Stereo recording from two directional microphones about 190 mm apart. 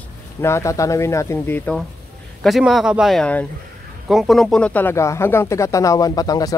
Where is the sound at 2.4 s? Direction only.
Centre (ahead or behind).